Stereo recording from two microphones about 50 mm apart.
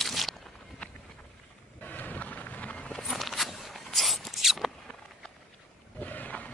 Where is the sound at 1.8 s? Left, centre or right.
Left.